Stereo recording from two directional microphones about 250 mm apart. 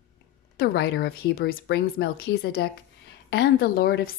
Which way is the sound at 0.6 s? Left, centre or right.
Left.